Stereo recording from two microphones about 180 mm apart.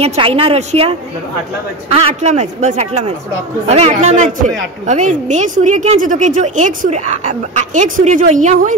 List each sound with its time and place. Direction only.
0.0 s a man's voice: 35° right (ahead or behind)